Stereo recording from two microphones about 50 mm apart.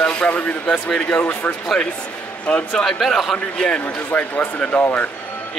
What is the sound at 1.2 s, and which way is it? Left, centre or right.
Speech, left.